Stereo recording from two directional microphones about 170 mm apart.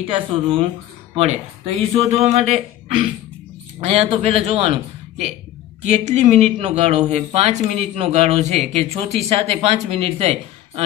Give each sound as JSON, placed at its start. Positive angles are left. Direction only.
{"t": 0.0, "sound": "speech", "side_deg": -30}
{"t": 3.8, "sound": "speech", "side_deg": -35}